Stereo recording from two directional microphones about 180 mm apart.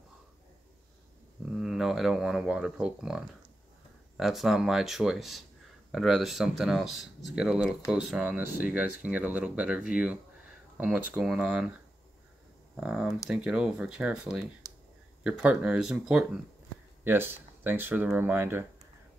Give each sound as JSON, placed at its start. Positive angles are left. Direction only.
{"t": 1.5, "sound": "speech", "side_deg": 0}
{"t": 12.7, "sound": "speech", "side_deg": -5}
{"t": 14.6, "sound": "clicking", "side_deg": 15}
{"t": 15.2, "sound": "speech", "side_deg": -5}